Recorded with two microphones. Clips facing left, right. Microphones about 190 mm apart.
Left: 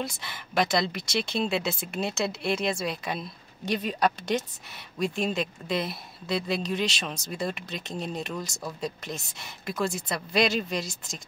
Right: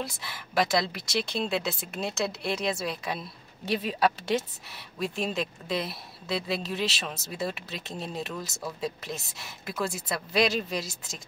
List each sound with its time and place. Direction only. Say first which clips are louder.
0.0 s speech: left 2 dB; centre (ahead or behind)